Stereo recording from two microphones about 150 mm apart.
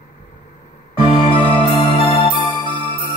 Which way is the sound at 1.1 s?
40° left (ahead or behind).